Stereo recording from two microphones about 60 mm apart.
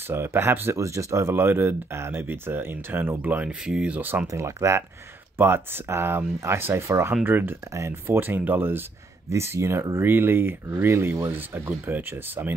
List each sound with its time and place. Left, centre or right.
0.1 s speech: right
0.7 s speech: right
1.3 s speech: right
3.4 s speech: centre
4.3 s speech: right
5.4 s speech: right
7.2 s speech: right
7.7 s speech: right
9.3 s speech: right